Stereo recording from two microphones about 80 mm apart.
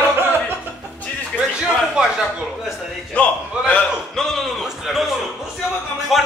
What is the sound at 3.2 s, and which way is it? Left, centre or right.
Speech, centre.